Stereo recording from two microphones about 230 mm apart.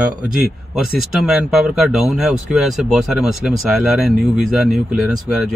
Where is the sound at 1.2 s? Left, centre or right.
Centre.